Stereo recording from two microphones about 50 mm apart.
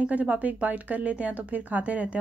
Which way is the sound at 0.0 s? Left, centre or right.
Right.